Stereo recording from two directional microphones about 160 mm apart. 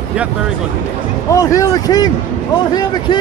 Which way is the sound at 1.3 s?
20° left (ahead or behind).